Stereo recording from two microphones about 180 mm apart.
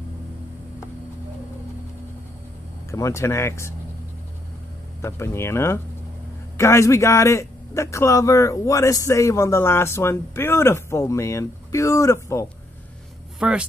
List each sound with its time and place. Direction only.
2.9 s a man's voice: 15° left (ahead or behind)
5.0 s a man's voice: 15° left (ahead or behind)
13.4 s a woman's voice: 5° right (ahead or behind)